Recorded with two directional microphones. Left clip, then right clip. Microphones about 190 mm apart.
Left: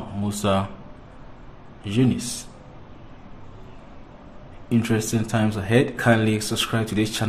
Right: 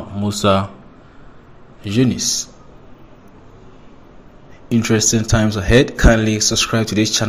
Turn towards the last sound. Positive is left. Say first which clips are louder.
# right 7 dB
turn(degrees=-20)  # may be behind; listen again after turning